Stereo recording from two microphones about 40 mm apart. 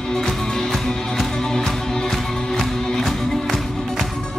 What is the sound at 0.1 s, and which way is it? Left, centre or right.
Music, centre.